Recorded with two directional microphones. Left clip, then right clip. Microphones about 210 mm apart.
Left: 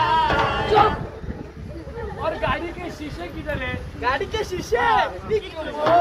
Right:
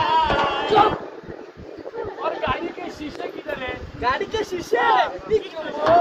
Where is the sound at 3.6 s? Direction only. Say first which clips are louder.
Right 2 dB; 15° right (ahead or behind).